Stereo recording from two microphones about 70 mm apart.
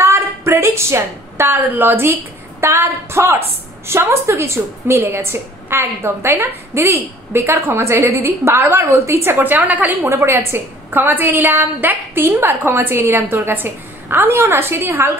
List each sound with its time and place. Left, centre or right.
0.0 s a sound: right
1.6 s a woman's voice: right
10.1 s a woman's voice: right